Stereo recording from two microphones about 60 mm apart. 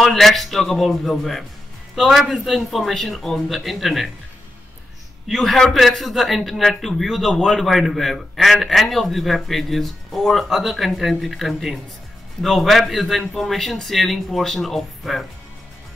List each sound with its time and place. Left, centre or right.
0.0 s a man's voice: centre
5.3 s a man's voice: centre